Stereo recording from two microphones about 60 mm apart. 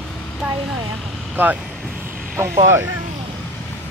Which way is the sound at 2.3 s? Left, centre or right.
Right.